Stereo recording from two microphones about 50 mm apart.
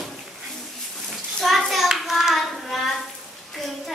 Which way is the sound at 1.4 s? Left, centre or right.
Centre.